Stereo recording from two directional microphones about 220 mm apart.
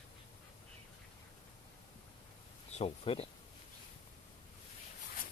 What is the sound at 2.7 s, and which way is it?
Speech, 25° left (ahead or behind).